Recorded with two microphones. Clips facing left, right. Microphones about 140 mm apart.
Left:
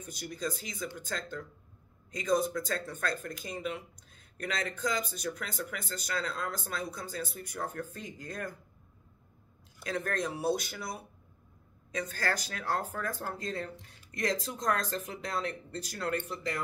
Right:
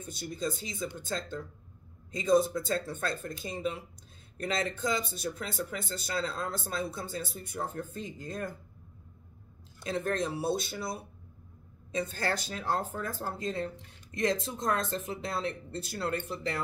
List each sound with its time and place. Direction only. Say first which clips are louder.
0.0 s speech: right 2 dB; 25° right (ahead or behind)
9.8 s speech: right 2 dB; 25° right (ahead or behind)